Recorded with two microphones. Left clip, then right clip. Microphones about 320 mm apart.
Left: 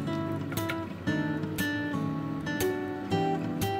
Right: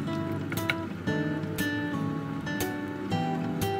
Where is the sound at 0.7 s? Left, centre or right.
Centre.